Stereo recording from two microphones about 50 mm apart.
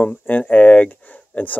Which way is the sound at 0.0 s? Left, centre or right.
Left.